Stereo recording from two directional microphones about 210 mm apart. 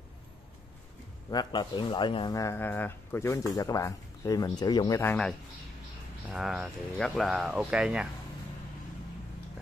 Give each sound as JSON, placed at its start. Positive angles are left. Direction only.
{"t": 1.3, "sound": "speech", "side_deg": 20}
{"t": 6.3, "sound": "speech", "side_deg": 0}